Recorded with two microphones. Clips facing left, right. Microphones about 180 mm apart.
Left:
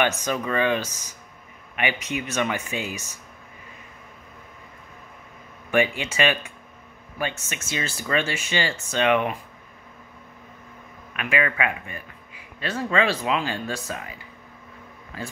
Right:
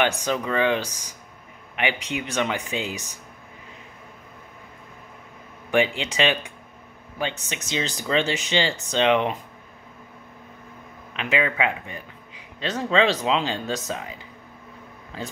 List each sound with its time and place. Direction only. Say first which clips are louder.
0.0 s speech: right 1 dB; 15° right (ahead or behind)
5.7 s speech: even; 15° right (ahead or behind)
11.1 s speech: right 1 dB; 20° right (ahead or behind)